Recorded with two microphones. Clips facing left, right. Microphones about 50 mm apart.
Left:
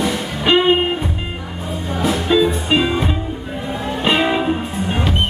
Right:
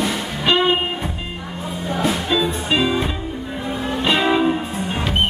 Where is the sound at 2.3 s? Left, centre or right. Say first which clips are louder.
Left 4 dB; centre.